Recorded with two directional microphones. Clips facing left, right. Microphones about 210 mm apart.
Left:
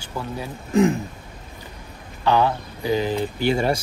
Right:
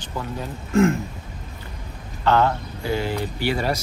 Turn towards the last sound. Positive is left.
turn(degrees=25)  # may be behind; listen again after turning